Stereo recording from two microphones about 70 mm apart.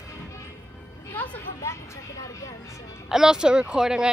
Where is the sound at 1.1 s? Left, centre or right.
Left.